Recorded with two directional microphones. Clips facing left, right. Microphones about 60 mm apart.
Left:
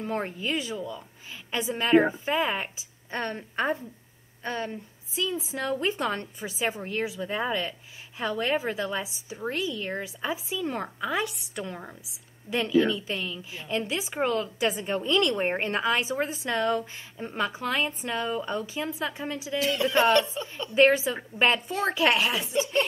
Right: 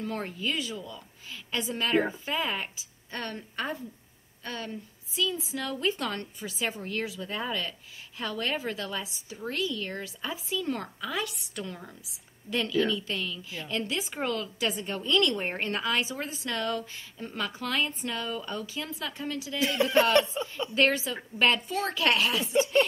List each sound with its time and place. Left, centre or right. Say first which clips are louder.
0.0 s a woman's voice: left 2 dB; left
19.6 s a woman's voice: left 1 dB; right
20.7 s a woman's voice: left 6 dB; left